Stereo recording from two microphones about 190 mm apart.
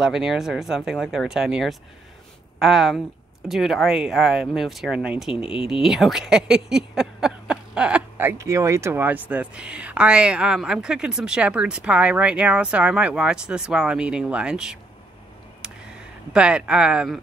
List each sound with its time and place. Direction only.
0.0 s speech: centre (ahead or behind)
5.4 s speech: 30° left (ahead or behind)
5.7 s speech: centre (ahead or behind)
15.6 s a sound: 5° right (ahead or behind)